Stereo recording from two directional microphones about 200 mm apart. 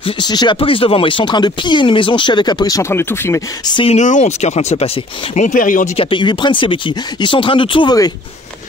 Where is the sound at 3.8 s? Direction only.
35° left (ahead or behind).